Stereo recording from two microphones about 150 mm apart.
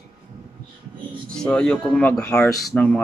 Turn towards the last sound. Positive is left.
turn(degrees=10)  # may be behind; listen again after turning